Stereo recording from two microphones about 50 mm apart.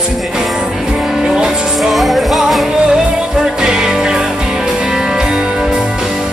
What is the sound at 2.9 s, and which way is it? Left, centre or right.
Music, centre.